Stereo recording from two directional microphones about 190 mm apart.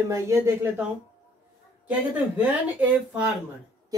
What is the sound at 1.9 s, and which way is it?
Speech, 10° right (ahead or behind).